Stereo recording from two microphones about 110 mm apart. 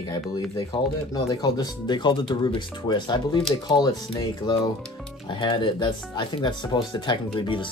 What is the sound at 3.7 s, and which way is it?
Speech, 35° left (ahead or behind).